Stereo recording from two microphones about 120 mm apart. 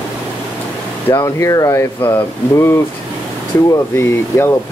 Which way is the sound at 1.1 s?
25° left (ahead or behind).